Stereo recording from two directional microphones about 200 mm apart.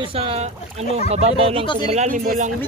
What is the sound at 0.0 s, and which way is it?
A man's voice, 30° right (ahead or behind).